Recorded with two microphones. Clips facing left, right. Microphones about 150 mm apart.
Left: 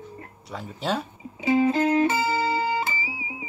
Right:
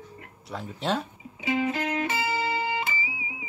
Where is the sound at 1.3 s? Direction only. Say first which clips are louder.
Left 6 dB; 30° left (ahead or behind).